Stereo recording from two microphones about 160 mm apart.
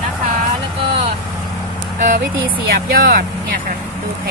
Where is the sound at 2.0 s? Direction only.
60° right (ahead or behind).